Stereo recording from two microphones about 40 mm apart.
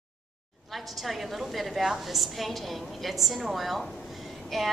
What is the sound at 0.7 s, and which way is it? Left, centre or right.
A woman's voice, centre.